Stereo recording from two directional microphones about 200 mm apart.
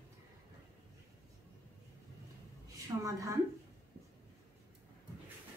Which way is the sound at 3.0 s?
15° right (ahead or behind).